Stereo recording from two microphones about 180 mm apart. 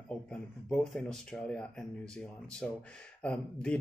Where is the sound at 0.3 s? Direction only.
5° left (ahead or behind).